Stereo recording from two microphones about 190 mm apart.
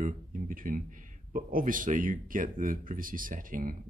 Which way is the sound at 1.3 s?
45° right (ahead or behind).